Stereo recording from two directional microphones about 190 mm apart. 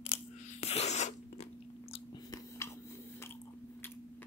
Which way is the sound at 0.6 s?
35° left (ahead or behind).